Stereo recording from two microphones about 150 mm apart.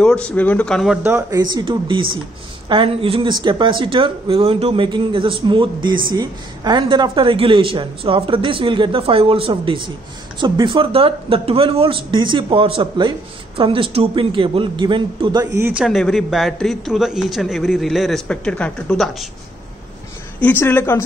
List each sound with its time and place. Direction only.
0.0 s speech: 5° left (ahead or behind)
1.0 s speech: 20° right (ahead or behind)
1.4 s speech: 30° right (ahead or behind)
15.5 s speech: 15° right (ahead or behind)
15.8 s a man's voice: centre (ahead or behind)
20.3 s speech: 10° left (ahead or behind)